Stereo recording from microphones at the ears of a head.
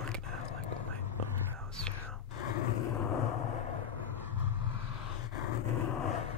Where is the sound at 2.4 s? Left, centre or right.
Left.